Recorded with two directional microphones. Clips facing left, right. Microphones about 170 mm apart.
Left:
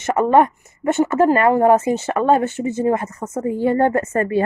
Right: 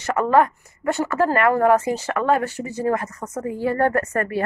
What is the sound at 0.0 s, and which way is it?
A woman's voice, 25° left (ahead or behind).